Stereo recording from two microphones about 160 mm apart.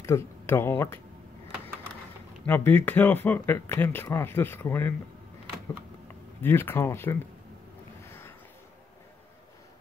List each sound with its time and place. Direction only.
0.0 s speech: 15° left (ahead or behind)
2.4 s speech: 10° left (ahead or behind)
6.4 s speech: 15° left (ahead or behind)
8.0 s a sound: 15° left (ahead or behind)